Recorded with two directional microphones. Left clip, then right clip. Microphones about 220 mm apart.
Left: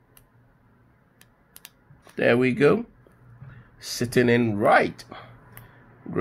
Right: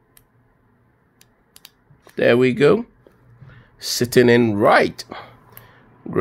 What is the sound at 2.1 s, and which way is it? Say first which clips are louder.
Speech: right 5 dB; 25° right (ahead or behind).